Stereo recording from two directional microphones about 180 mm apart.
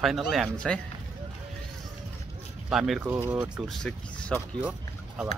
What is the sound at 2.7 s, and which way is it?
Speech, 5° right (ahead or behind).